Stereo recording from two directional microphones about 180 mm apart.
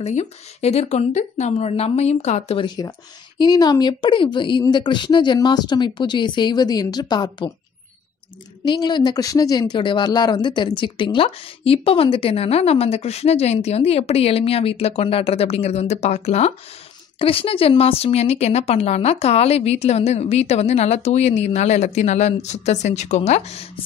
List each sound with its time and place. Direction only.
0.0 s speech: 35° left (ahead or behind)
8.6 s speech: 25° left (ahead or behind)